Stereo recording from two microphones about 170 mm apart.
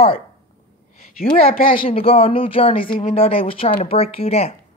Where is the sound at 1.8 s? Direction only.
35° left (ahead or behind).